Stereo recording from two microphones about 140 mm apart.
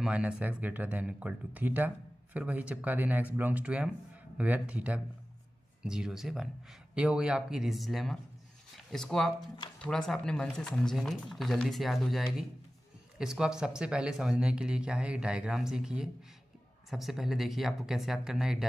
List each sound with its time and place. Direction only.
0.0 s speech: 5° right (ahead or behind)